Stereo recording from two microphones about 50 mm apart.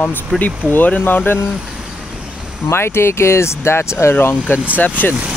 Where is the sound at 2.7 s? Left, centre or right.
Left.